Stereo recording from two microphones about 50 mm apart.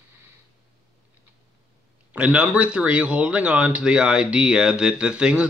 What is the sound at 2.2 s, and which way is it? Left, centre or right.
Speech, right.